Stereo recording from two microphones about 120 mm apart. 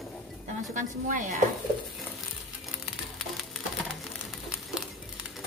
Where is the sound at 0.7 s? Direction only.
90° right.